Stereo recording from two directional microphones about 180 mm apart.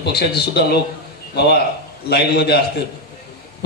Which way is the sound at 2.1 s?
65° left (ahead or behind).